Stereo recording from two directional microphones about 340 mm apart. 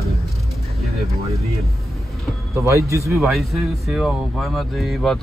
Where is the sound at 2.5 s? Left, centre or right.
Centre.